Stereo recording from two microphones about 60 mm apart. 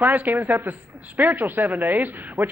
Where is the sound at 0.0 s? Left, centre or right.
Right.